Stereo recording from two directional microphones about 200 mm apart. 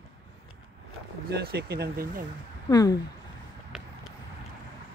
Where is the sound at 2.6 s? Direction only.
20° left (ahead or behind).